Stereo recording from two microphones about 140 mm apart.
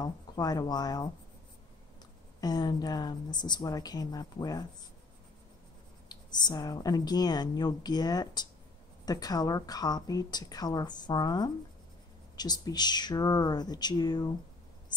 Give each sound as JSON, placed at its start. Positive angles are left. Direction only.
{"t": 0.0, "sound": "a woman's voice", "side_deg": 30}
{"t": 2.4, "sound": "a woman's voice", "side_deg": 30}
{"t": 6.0, "sound": "a woman's voice", "side_deg": 30}